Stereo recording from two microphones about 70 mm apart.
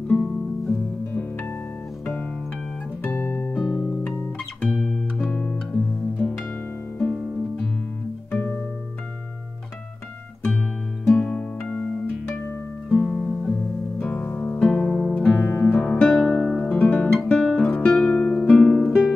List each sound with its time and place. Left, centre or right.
0.1 s music: left
3.0 s music: left
4.6 s music: centre
7.0 s music: centre
8.3 s music: left
11.1 s music: centre
15.4 s music: left; by 19.1 s centre